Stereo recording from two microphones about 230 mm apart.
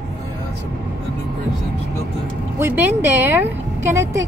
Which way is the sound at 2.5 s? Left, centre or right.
Centre.